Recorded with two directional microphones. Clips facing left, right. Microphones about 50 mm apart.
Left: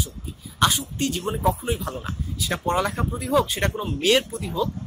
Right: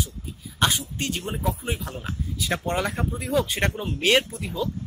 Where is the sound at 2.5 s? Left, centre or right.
Right.